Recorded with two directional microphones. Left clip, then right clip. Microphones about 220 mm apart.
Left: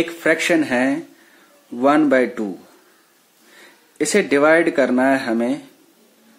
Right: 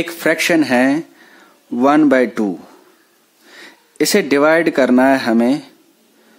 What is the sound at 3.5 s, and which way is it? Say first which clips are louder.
Speech: right 5 dB; 45° right (ahead or behind).